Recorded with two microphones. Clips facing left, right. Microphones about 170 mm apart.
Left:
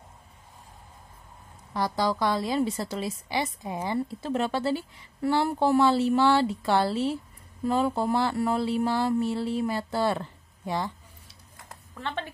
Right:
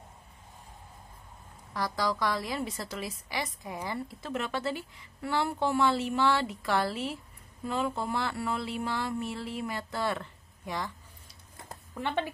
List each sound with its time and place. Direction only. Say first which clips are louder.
1.7 s a woman's voice: left 4 dB; 25° left (ahead or behind)
11.5 s a sound: right 3 dB; 25° right (ahead or behind)
12.0 s speech: right 2 dB; 15° right (ahead or behind)